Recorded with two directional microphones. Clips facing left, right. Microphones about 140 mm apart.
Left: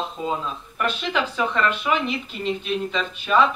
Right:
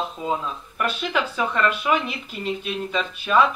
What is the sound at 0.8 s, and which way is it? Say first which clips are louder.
Speech: even; 5° right (ahead or behind).